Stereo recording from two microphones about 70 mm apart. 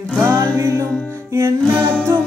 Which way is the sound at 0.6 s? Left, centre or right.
Right.